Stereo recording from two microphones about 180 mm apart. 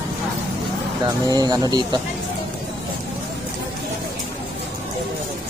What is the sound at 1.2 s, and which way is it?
Speech, 20° right (ahead or behind).